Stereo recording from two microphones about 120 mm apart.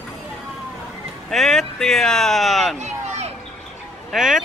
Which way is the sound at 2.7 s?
70° right (ahead or behind).